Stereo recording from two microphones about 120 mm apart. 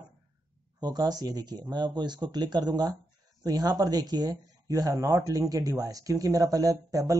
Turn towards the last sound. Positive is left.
turn(degrees=-30)  # may be behind; listen again after turning